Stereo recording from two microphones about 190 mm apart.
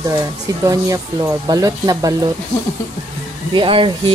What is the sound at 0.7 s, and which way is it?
Speech, 15° right (ahead or behind).